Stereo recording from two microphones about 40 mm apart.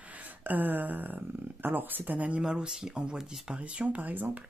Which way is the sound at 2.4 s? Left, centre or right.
Right.